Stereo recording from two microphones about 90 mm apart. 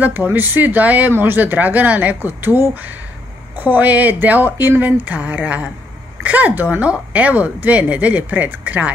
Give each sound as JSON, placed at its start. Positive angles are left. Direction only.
{"t": 0.0, "sound": "a woman's voice", "side_deg": -20}